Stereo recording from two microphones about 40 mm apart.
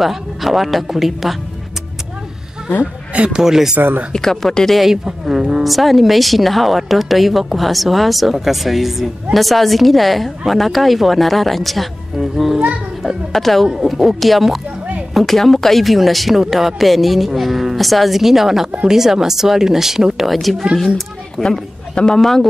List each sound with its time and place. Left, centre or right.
0.0 s a woman's voice: centre
2.8 s speech: right
3.3 s speech: centre
4.1 s a woman's voice: centre
5.0 s speech: centre
5.6 s a woman's voice: centre
13.0 s music: centre
13.7 s a woman's voice: centre
21.4 s a man's voice: left
22.2 s speech: centre